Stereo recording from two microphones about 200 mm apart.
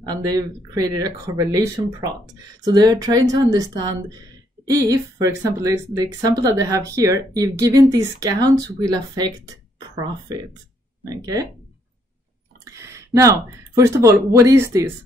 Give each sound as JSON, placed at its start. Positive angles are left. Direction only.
{"t": 0.1, "sound": "a woman's voice", "side_deg": -20}
{"t": 12.7, "sound": "speech", "side_deg": -15}